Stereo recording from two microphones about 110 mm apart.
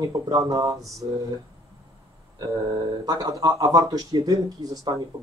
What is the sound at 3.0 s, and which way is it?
Speech, 35° right (ahead or behind).